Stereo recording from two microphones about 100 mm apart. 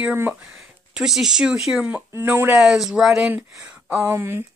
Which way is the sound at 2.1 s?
20° right (ahead or behind).